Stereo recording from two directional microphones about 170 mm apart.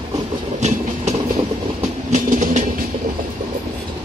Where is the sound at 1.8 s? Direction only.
45° right (ahead or behind).